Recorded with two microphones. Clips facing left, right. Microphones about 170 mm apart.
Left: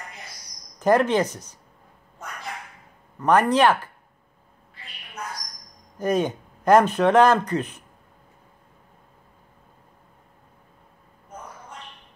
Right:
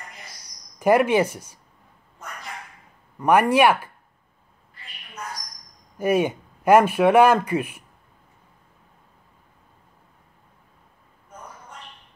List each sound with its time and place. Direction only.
0.7 s speech: 10° right (ahead or behind)
3.2 s speech: 10° right (ahead or behind)
5.9 s speech: 10° right (ahead or behind)